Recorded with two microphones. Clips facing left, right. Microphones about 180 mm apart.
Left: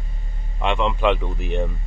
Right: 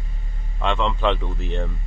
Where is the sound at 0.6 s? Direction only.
15° left (ahead or behind).